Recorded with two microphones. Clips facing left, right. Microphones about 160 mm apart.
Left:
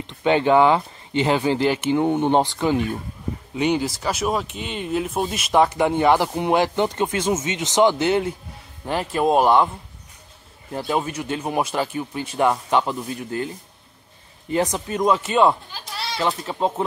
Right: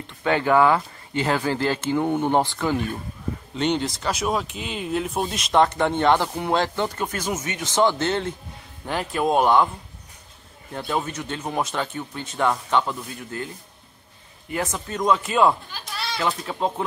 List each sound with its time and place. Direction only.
0.0 s speech: 20° left (ahead or behind)
3.5 s speech: 5° left (ahead or behind)
10.9 s speech: 10° left (ahead or behind)
14.7 s speech: 10° left (ahead or behind)
15.2 s speech: centre (ahead or behind)